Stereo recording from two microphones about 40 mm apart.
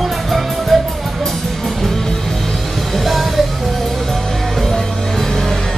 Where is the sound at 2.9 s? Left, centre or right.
Centre.